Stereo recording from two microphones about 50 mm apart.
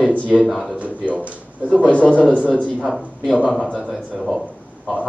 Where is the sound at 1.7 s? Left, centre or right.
Left.